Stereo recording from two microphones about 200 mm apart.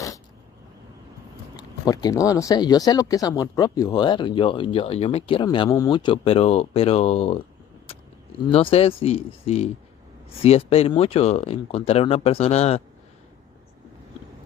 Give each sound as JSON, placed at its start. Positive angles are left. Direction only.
{"t": 1.6, "sound": "speech", "side_deg": 20}
{"t": 8.5, "sound": "speech", "side_deg": 30}